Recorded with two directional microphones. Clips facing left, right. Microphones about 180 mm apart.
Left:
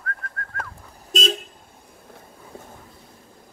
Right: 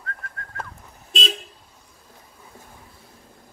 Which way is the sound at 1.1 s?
40° left (ahead or behind).